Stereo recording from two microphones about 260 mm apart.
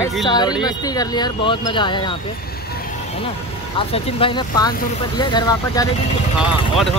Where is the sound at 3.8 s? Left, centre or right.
Left.